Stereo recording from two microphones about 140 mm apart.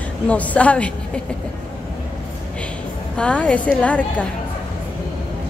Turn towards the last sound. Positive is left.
turn(degrees=10)  # may be behind; listen again after turning